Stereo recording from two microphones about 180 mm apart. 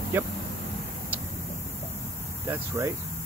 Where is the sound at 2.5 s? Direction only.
15° right (ahead or behind).